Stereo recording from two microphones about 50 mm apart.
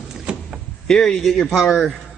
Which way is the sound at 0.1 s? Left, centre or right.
Centre.